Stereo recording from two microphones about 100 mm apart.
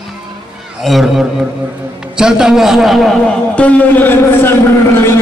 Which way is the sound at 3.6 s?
15° left (ahead or behind).